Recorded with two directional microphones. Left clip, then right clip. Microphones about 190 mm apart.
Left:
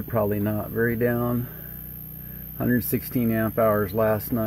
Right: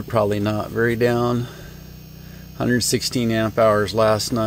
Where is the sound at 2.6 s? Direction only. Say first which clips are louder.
Right 6 dB; 15° right (ahead or behind).